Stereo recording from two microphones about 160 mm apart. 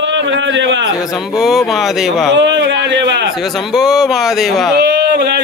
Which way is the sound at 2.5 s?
90° right.